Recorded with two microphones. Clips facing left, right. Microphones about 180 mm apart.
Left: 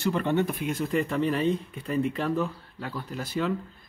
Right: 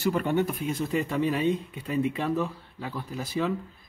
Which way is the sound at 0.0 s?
10° right (ahead or behind).